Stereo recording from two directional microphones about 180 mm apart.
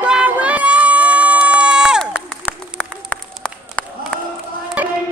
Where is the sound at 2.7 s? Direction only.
5° left (ahead or behind).